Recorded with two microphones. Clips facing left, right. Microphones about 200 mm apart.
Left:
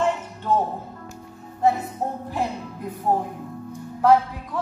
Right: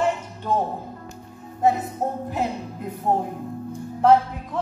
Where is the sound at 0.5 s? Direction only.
15° right (ahead or behind).